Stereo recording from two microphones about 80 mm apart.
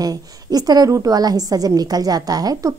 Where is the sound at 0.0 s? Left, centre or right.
Right.